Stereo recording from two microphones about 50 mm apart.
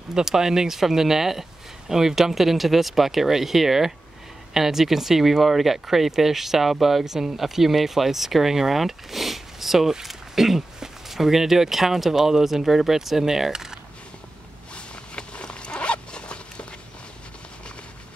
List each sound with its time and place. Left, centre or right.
0.1 s speech: centre
15.1 s zipper: centre